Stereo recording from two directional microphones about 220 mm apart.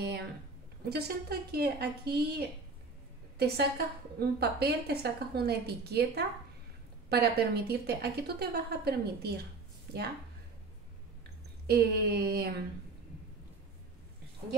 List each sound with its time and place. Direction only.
0.0 s a sound: 50° right (ahead or behind)
0.8 s speech: 45° right (ahead or behind)
11.6 s speech: 45° right (ahead or behind)